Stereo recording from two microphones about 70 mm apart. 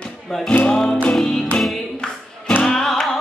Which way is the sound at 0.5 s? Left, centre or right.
Left.